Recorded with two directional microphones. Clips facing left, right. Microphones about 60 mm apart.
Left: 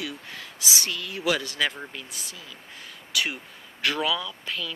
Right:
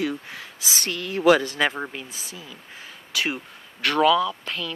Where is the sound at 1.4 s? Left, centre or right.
Right.